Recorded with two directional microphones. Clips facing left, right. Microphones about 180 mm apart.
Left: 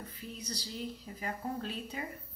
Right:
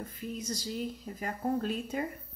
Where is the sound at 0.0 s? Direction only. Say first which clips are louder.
Right 6 dB; 45° right (ahead or behind).